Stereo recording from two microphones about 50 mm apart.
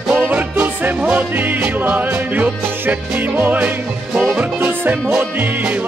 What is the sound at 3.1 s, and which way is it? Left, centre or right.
Music, right.